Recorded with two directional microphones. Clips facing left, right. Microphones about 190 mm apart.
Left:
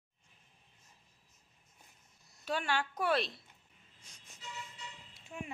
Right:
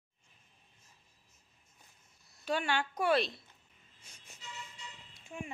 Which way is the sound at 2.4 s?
Centre (ahead or behind).